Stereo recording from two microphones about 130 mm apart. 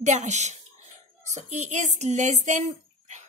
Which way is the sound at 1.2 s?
65° right (ahead or behind).